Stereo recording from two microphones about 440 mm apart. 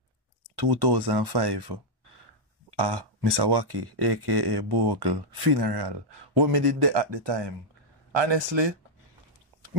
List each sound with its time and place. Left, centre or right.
0.6 s speech: right
2.8 s speech: right